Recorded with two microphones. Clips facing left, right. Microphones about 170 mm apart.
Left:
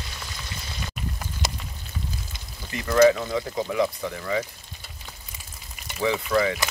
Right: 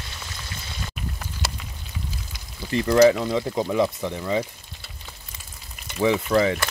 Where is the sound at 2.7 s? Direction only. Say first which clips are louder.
Right 2 dB; 30° right (ahead or behind).